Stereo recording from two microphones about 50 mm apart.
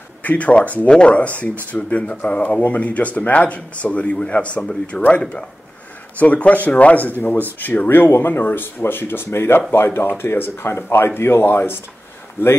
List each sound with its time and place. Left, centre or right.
0.2 s speech: left; by 5.0 s centre
6.1 s speech: left